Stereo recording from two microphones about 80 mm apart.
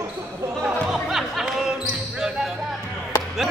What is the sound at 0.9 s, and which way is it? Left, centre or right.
Music, centre.